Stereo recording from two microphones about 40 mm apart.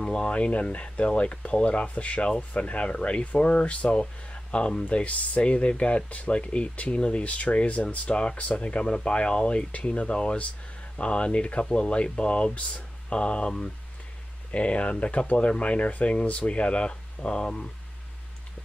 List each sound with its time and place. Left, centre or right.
0.0 s speech: left
8.8 s speech: left
9.7 s speech: left
14.5 s speech: left